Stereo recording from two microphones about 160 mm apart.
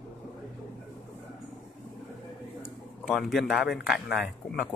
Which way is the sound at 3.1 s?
Centre (ahead or behind).